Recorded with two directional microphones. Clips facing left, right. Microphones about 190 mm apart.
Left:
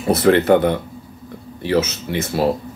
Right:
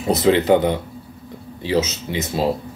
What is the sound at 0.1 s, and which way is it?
Speech, 20° right (ahead or behind).